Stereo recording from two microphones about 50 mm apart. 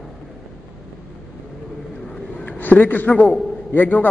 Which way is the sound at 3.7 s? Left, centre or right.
Left.